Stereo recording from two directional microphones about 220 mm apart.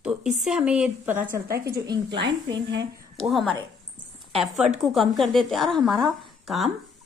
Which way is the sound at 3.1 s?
Centre (ahead or behind).